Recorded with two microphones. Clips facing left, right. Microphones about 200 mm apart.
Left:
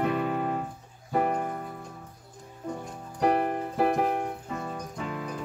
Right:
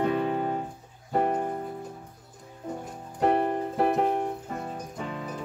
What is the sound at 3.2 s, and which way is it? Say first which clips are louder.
Music: right 1 dB; 25° right (ahead or behind).